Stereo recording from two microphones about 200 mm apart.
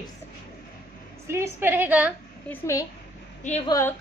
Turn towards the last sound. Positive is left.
turn(degrees=15)  # may be behind; listen again after turning